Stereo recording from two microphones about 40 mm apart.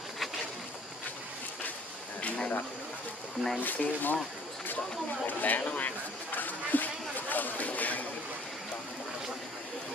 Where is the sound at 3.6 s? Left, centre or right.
Left.